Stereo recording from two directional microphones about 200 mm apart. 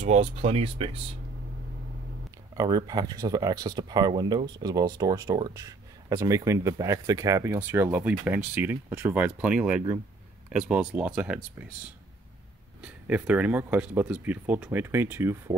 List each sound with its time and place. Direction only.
0.0 s speech: 30° right (ahead or behind)
2.5 s speech: 20° right (ahead or behind)
12.8 s speech: 5° right (ahead or behind)